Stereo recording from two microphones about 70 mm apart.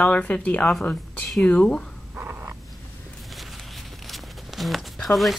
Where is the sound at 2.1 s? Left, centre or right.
Right.